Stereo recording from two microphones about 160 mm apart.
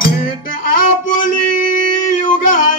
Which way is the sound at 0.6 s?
60° left (ahead or behind).